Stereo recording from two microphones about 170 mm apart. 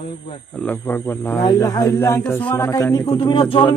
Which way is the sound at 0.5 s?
5° left (ahead or behind).